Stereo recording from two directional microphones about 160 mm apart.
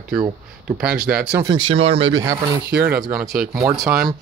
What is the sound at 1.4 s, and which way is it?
Speech, 35° right (ahead or behind).